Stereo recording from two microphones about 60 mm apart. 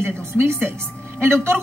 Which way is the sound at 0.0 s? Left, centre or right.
Right.